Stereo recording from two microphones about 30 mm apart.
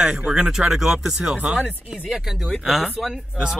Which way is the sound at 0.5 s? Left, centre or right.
Centre.